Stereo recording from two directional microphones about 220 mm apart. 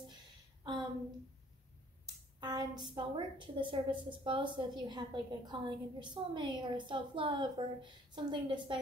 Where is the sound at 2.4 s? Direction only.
20° right (ahead or behind).